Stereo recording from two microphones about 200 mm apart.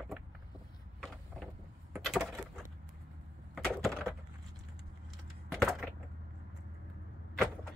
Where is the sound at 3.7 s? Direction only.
Centre (ahead or behind).